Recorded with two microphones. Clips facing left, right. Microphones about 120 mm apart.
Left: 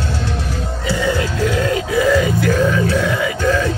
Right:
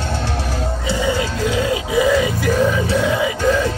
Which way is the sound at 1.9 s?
15° right (ahead or behind).